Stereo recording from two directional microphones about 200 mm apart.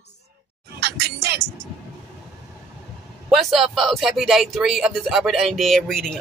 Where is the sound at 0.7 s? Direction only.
55° right (ahead or behind).